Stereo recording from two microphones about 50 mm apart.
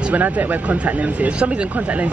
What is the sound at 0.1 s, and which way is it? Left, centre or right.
Speech, right.